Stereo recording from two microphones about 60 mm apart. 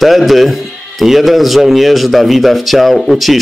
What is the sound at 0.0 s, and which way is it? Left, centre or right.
Speech, centre.